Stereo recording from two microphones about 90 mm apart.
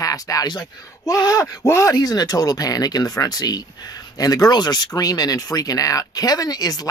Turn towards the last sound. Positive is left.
turn(degrees=45)  # may be behind; listen again after turning